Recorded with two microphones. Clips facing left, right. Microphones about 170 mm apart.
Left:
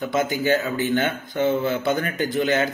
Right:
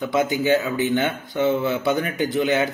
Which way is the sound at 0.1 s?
15° right (ahead or behind).